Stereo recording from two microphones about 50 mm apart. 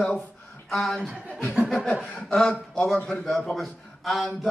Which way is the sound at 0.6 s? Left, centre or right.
Centre.